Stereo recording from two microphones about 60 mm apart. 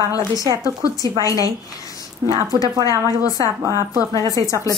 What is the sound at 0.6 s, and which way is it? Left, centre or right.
Speech, left.